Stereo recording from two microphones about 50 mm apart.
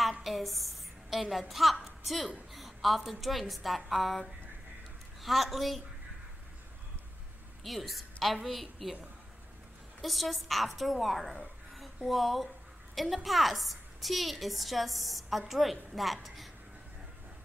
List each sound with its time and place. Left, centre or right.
0.2 s a woman's voice: centre
7.6 s a woman's voice: centre
10.0 s a woman's voice: centre
11.7 s a sound: centre
12.9 s a woman's voice: centre